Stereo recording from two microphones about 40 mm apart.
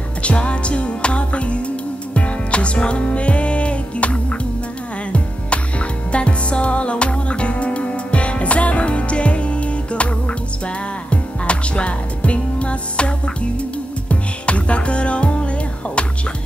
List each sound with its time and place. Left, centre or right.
0.2 s music: left
11.1 s music: left